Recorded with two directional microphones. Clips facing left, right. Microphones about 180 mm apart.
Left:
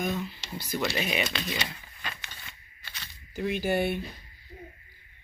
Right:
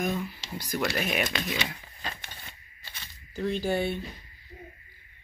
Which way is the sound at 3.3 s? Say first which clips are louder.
Even; 15° left (ahead or behind).